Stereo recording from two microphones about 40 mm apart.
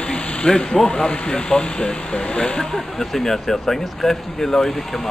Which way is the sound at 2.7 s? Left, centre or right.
Centre.